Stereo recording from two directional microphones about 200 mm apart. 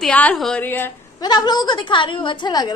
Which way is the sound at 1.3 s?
20° left (ahead or behind).